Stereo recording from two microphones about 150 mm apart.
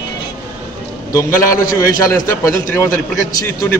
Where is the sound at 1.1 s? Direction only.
20° left (ahead or behind).